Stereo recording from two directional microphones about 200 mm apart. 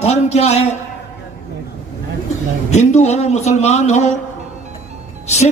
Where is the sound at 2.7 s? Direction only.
35° left (ahead or behind).